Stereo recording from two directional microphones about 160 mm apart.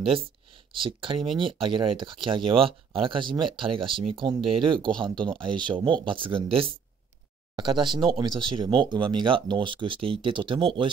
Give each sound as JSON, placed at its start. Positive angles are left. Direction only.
{"t": 0.0, "sound": "speech", "side_deg": -35}